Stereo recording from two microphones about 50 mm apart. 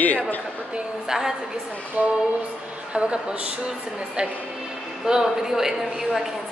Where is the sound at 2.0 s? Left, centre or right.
Right.